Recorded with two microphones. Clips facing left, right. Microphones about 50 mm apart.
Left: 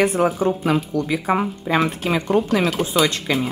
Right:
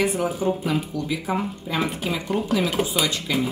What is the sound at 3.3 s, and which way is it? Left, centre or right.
Speech, left.